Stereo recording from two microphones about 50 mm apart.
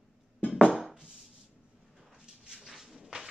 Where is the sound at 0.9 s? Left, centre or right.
Centre.